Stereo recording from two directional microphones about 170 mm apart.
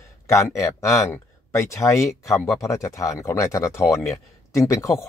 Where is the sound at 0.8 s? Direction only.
20° left (ahead or behind).